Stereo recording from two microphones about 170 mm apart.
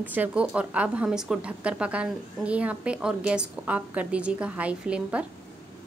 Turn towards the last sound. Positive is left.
turn(degrees=-5)  # may be behind; listen again after turning